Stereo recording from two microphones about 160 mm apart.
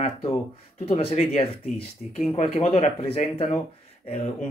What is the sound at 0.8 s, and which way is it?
Speech, 40° left (ahead or behind).